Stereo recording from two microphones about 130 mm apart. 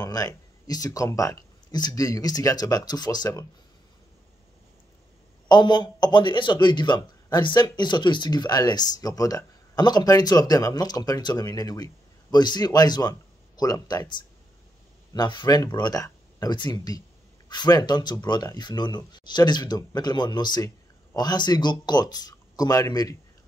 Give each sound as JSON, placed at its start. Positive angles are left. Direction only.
{"t": 0.0, "sound": "speech", "side_deg": 30}
{"t": 5.5, "sound": "speech", "side_deg": 35}